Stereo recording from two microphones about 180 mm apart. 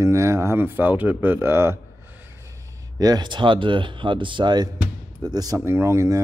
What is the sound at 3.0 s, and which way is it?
Speech, 25° right (ahead or behind).